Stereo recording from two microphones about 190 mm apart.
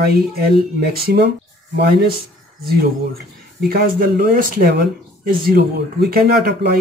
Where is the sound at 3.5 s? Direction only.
50° right (ahead or behind).